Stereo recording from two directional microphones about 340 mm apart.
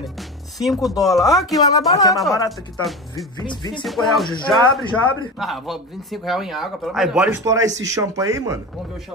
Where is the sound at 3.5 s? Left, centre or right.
Centre.